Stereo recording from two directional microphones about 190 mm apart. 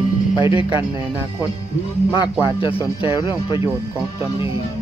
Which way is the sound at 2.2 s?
25° left (ahead or behind).